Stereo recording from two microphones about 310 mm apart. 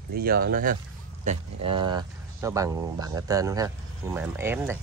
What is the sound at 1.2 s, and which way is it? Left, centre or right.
Speech, centre.